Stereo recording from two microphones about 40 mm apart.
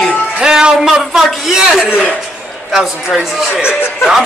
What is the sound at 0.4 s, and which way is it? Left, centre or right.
Music, centre.